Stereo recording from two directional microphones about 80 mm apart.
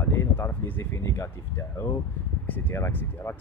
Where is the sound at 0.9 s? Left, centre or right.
Left.